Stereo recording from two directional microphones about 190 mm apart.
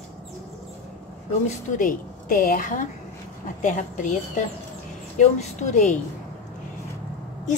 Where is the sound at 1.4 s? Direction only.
45° left (ahead or behind).